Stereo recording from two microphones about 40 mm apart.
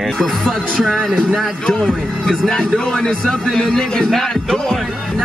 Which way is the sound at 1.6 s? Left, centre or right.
Centre.